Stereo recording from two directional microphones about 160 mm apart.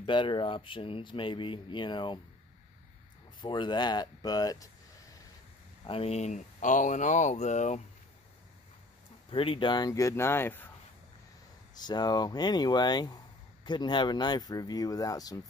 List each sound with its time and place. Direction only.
0.0 s speech: 30° left (ahead or behind)
3.3 s speech: 30° left (ahead or behind)
5.9 s speech: 40° left (ahead or behind)
9.3 s speech: 35° left (ahead or behind); by 10.7 s 15° left (ahead or behind)
11.7 s speech: 25° left (ahead or behind)